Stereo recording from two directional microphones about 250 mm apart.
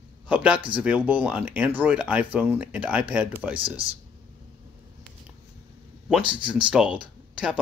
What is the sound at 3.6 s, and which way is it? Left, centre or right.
Speech, right.